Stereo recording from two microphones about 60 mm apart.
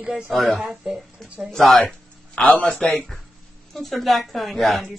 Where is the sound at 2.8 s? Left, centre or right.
Centre.